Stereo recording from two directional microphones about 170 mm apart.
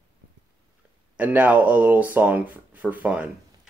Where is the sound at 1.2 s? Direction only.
10° right (ahead or behind).